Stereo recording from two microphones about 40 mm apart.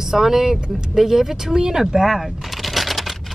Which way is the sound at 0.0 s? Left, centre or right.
Centre.